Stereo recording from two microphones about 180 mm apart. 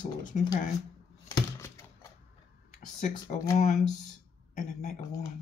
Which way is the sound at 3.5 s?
45° left (ahead or behind).